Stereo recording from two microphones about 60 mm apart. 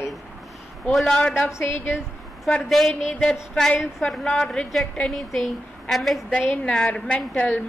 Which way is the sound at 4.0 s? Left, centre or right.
Centre.